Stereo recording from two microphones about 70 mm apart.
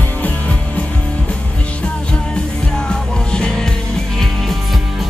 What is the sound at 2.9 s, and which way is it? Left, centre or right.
Music, centre.